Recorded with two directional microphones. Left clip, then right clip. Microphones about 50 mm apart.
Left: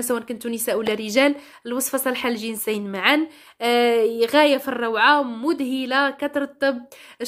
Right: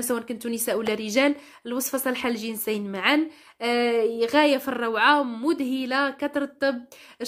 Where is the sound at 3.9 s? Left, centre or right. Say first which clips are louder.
Left 4 dB; left.